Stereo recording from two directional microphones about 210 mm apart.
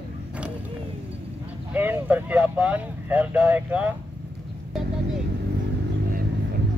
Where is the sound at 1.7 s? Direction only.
10° right (ahead or behind).